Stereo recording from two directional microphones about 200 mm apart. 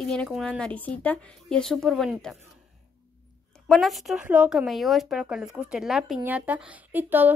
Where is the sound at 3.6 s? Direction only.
Centre (ahead or behind).